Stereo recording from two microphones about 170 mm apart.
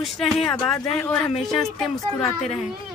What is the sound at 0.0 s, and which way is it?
Speech, centre (ahead or behind).